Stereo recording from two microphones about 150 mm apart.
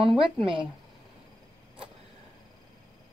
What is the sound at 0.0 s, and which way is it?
Speech, 35° right (ahead or behind).